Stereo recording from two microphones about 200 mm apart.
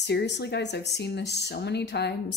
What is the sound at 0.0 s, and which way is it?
Speech, 55° left (ahead or behind).